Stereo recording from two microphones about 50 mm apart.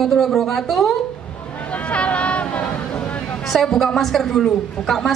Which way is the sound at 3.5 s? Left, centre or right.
Centre.